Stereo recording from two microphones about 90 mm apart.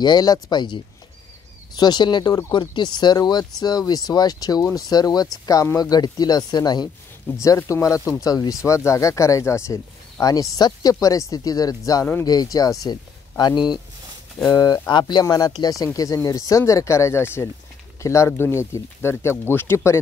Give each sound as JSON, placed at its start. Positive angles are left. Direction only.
{"t": 0.0, "sound": "speech", "side_deg": 50}
{"t": 1.8, "sound": "speech", "side_deg": 55}
{"t": 7.4, "sound": "speech", "side_deg": 35}
{"t": 10.5, "sound": "speech", "side_deg": 45}
{"t": 15.2, "sound": "speech", "side_deg": 45}